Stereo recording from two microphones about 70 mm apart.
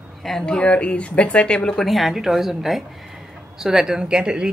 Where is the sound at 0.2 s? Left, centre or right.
Centre.